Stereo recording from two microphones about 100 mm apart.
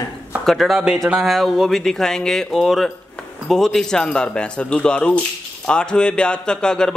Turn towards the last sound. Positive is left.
turn(degrees=5)  # may be behind; listen again after turning